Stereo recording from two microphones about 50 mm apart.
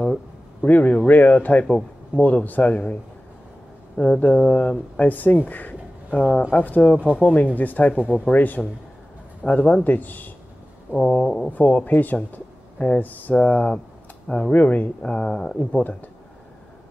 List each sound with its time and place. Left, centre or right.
0.0 s a sound: centre
0.7 s speech: left
11.0 s speech: centre
11.4 s speech: left
12.7 s speech: left
13.0 s speech: left
13.3 s speech: left
14.2 s speech: centre
14.5 s speech: left
15.0 s speech: centre
15.8 s speech: left